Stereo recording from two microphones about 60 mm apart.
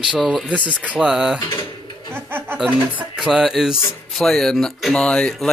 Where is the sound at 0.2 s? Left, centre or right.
Centre.